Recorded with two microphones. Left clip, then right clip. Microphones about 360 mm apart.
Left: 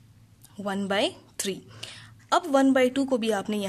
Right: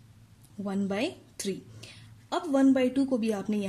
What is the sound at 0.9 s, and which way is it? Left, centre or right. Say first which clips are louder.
Speech: left 9 dB; centre.